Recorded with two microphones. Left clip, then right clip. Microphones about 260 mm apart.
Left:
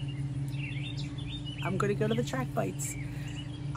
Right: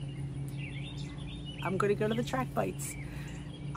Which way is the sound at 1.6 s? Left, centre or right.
Centre.